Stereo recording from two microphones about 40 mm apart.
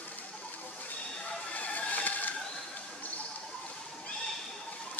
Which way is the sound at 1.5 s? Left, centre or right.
Left.